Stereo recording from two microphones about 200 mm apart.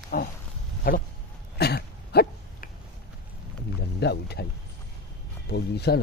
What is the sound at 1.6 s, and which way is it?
Throat clearing, 50° left (ahead or behind).